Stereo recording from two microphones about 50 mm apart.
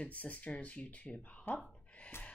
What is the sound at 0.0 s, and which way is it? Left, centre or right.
Speech, left.